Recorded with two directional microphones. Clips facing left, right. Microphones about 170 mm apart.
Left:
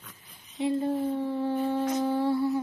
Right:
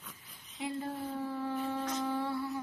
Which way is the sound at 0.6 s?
25° left (ahead or behind).